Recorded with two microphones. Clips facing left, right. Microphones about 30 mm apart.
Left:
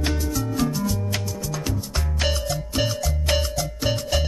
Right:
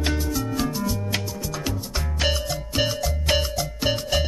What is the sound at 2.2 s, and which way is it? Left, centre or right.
Music, centre.